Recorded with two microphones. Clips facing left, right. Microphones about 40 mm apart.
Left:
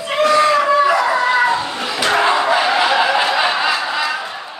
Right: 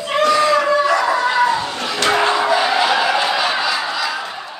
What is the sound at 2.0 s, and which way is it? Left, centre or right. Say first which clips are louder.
Battle cry: left 1 dB; centre.